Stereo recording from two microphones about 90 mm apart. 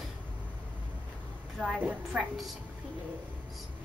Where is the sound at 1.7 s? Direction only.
15° right (ahead or behind).